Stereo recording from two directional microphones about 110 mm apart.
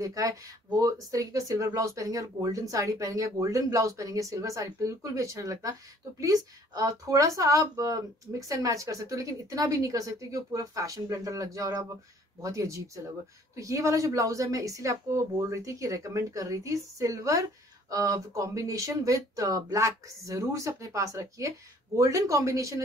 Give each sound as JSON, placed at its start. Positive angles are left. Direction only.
{"t": 0.0, "sound": "speech", "side_deg": -30}